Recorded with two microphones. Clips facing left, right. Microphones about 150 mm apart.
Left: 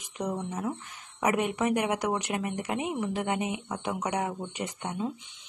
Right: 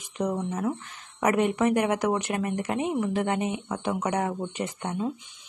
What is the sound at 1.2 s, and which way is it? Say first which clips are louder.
Speech: right 4 dB; 15° left (ahead or behind).